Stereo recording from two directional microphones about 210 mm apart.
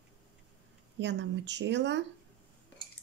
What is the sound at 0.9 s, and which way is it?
Speech, 60° right (ahead or behind).